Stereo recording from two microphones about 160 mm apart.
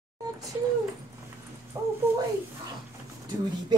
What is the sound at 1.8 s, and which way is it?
Speech, 20° right (ahead or behind).